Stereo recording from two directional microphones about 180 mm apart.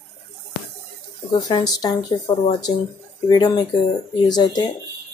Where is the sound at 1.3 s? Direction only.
20° left (ahead or behind).